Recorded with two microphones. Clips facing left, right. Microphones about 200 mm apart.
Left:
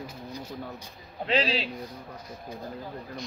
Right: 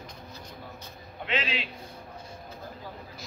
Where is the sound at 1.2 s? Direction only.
35° left (ahead or behind).